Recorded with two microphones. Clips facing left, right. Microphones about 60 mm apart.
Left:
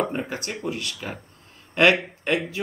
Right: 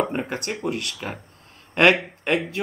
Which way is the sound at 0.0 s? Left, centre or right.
Centre.